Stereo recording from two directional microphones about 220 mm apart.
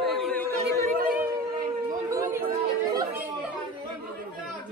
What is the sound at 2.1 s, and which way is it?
Chatter, 15° right (ahead or behind).